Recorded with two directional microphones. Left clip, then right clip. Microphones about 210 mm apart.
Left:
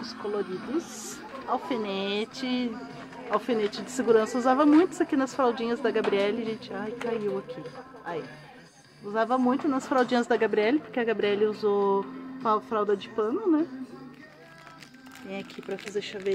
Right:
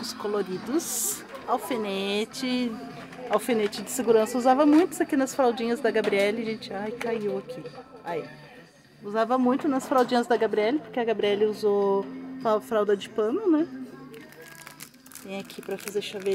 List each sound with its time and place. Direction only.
0.0 s music: 25° right (ahead or behind)
1.5 s a woman's voice: 15° right (ahead or behind)
9.1 s a woman's voice: 10° right (ahead or behind)
15.2 s a woman's voice: 15° right (ahead or behind)